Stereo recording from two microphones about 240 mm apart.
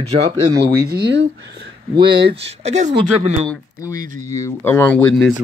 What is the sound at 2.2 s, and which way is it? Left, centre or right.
Speech, right.